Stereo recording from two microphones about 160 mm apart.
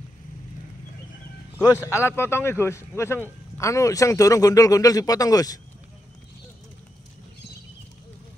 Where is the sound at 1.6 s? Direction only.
15° left (ahead or behind).